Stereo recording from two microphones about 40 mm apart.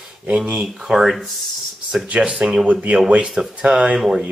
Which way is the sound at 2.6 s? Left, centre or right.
Right.